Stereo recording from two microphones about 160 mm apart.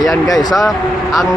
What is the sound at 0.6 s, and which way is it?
Speech, centre (ahead or behind).